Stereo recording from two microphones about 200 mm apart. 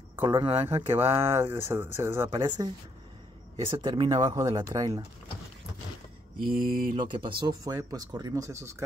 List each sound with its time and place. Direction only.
0.2 s speech: 25° right (ahead or behind)
1.1 s speech: 15° right (ahead or behind)
2.3 s speech: 20° right (ahead or behind)
6.5 s mantra: 45° right (ahead or behind)
7.0 s speech: 25° right (ahead or behind)